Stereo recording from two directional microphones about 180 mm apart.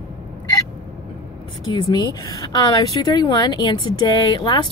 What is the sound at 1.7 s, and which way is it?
A woman's voice, 25° left (ahead or behind).